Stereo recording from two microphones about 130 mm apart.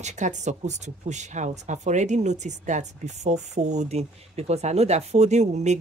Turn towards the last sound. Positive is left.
turn(degrees=-65)  # may be behind; listen again after turning